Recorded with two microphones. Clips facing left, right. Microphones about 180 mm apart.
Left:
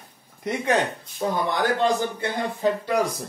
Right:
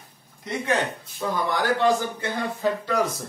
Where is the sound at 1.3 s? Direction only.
20° left (ahead or behind).